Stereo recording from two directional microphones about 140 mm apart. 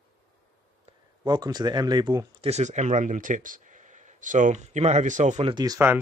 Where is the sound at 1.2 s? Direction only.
30° right (ahead or behind).